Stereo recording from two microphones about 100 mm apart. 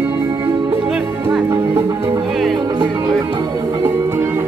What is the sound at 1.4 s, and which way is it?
Music, 25° right (ahead or behind).